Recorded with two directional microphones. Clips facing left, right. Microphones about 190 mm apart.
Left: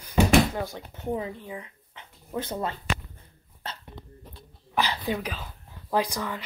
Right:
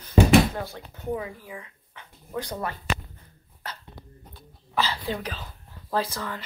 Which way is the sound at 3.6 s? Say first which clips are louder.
Even; 25° left (ahead or behind).